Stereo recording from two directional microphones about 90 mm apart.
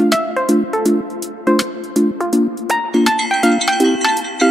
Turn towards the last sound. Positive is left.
turn(degrees=0)  # may be behind; listen again after turning